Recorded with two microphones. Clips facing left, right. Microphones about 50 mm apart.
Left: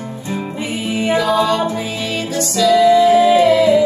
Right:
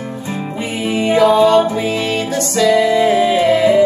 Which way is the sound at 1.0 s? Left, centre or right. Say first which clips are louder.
Right 5 dB; right.